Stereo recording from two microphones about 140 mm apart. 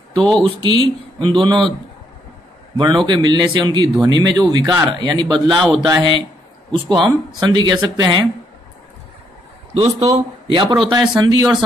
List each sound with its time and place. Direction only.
0.2 s speech: 5° left (ahead or behind)
0.6 s a man's voice: 35° right (ahead or behind)
2.8 s a man's voice: 30° right (ahead or behind)
9.8 s a man's voice: 45° right (ahead or behind); by 11.5 s 30° right (ahead or behind)